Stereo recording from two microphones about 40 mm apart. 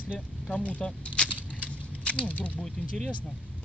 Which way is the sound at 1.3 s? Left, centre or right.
Right.